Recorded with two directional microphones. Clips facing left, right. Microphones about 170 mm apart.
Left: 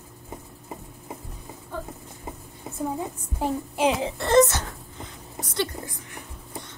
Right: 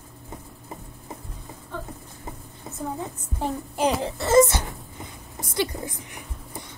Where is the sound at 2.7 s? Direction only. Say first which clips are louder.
Left 1 dB; 15° left (ahead or behind).